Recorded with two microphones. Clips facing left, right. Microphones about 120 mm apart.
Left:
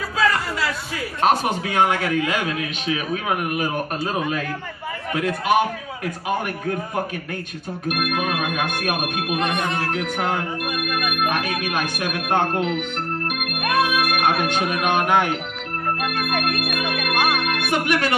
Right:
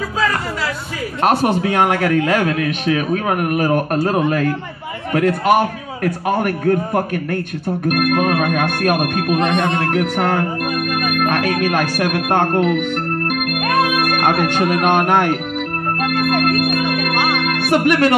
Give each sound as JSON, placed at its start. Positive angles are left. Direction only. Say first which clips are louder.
{"t": 1.6, "sound": "a man's voice", "louder": "right 4 dB", "side_deg": -50}
{"t": 10.3, "sound": "a man's voice", "louder": "right 6 dB", "side_deg": -45}
{"t": 13.3, "sound": "music", "louder": "right 5 dB", "side_deg": -50}
{"t": 16.3, "sound": "music", "louder": "right 8 dB", "side_deg": -50}
{"t": 17.4, "sound": "music", "louder": "right 6 dB", "side_deg": -60}